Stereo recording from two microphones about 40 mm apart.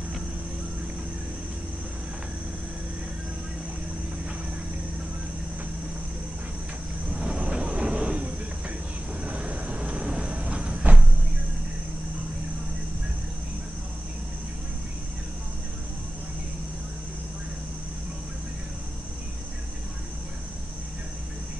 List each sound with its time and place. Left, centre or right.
7.2 s vehicle: right
9.2 s cricket: right